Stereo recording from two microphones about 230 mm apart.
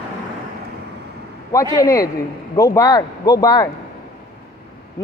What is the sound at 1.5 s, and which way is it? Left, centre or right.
Speech, centre.